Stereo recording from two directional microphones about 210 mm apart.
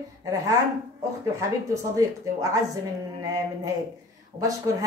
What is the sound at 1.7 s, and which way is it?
Speech, 15° right (ahead or behind).